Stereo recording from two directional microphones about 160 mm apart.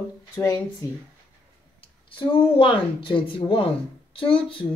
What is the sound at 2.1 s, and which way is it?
A woman's voice, 30° left (ahead or behind).